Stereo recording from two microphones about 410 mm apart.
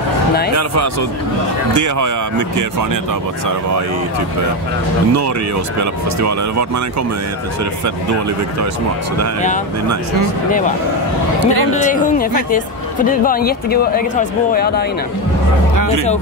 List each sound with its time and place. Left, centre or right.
1.7 s speech: right
5.8 s speech: right
11.3 s a man's voice: right
11.7 s speech: centre
15.7 s a sound: right